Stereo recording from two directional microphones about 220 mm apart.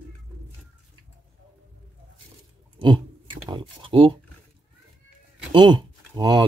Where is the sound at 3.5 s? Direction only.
25° right (ahead or behind).